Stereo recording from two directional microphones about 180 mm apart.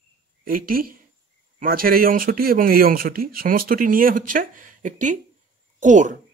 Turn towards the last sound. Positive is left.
turn(degrees=-45)  # may be behind; listen again after turning